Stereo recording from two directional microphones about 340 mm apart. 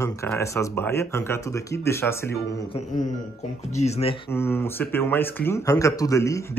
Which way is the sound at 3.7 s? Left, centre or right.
Centre.